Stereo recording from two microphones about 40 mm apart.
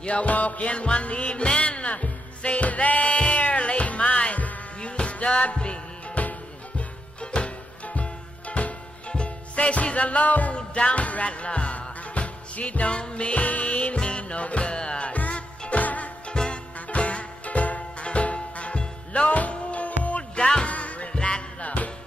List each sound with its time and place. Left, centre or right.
0.0 s music: left
4.7 s music: left
6.2 s music: left
7.2 s music: left
10.5 s music: left
15.1 s music: left
16.3 s music: left
19.2 s music: left
20.3 s music: left
20.6 s music: left
21.6 s music: left